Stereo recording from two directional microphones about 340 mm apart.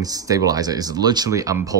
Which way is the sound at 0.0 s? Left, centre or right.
Centre.